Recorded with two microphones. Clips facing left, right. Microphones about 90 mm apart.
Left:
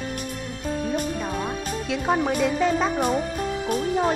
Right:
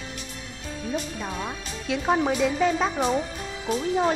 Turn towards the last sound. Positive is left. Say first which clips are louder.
# left 1 dB
turn(degrees=5)  # may be behind; listen again after turning